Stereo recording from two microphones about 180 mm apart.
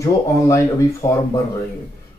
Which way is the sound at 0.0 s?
15° left (ahead or behind).